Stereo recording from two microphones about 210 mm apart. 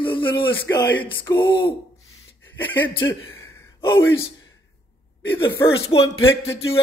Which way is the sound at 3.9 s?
10° left (ahead or behind).